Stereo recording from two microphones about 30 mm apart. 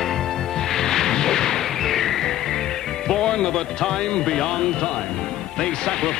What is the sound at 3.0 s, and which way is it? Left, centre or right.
Speech, centre.